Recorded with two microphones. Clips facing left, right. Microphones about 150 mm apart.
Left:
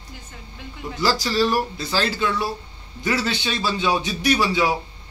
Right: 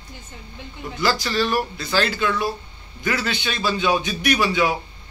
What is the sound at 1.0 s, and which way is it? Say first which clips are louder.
A man's voice: left 1 dB; 35° left (ahead or behind).